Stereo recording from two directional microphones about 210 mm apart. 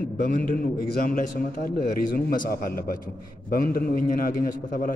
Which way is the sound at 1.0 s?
40° left (ahead or behind).